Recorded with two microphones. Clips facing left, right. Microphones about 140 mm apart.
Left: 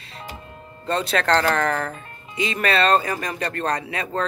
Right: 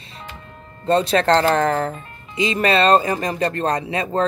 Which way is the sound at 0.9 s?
30° right (ahead or behind).